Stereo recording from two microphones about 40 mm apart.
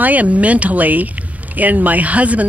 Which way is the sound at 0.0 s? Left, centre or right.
Right.